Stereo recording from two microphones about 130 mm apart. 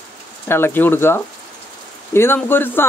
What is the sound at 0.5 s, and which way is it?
Speech, 15° left (ahead or behind).